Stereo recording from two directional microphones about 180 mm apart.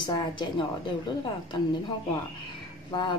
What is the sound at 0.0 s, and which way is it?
Speech, 25° left (ahead or behind).